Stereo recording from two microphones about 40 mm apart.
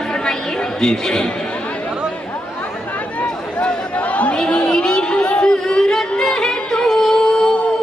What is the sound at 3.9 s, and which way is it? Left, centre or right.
Chatter, left.